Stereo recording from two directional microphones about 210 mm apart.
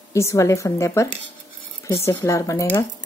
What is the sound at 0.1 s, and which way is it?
A woman's voice, 15° left (ahead or behind).